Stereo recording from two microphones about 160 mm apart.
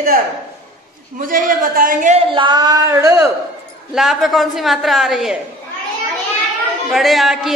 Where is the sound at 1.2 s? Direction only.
60° right (ahead or behind).